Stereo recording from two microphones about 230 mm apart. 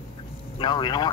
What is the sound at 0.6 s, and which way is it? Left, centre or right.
Speech, centre.